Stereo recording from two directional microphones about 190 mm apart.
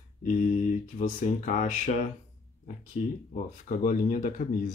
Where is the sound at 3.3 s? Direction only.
45° left (ahead or behind).